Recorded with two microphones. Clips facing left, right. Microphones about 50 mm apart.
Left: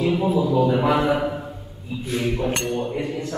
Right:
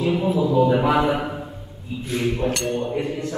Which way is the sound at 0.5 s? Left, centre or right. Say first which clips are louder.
Right 3 dB; centre.